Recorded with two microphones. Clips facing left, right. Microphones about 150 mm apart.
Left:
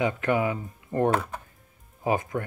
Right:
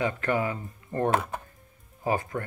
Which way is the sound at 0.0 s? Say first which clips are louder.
Left 2 dB; 15° left (ahead or behind).